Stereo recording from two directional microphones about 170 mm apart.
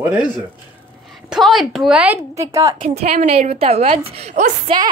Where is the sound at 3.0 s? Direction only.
40° right (ahead or behind).